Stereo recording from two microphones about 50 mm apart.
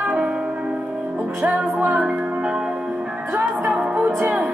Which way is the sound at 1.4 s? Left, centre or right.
Right.